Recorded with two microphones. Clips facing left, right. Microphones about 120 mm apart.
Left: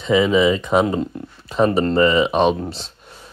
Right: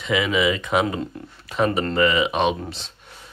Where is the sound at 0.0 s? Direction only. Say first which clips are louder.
Left 6 dB; 35° left (ahead or behind).